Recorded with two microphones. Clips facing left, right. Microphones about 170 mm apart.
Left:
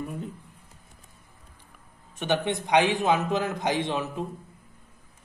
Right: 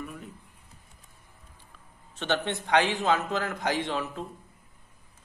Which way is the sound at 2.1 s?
15° left (ahead or behind).